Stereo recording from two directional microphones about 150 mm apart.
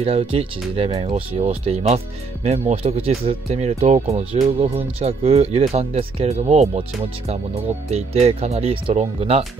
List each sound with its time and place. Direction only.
0.0 s speech: 40° right (ahead or behind)
7.9 s speech: 45° right (ahead or behind)